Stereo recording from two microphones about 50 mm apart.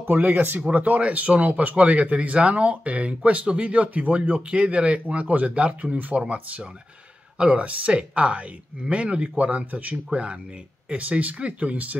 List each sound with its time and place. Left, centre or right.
0.1 s speech: right
0.7 s a man's voice: right